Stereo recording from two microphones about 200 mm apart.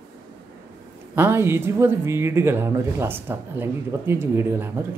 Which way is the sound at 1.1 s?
10° right (ahead or behind).